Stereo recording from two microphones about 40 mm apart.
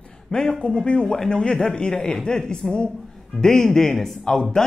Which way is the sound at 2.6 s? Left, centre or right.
Centre.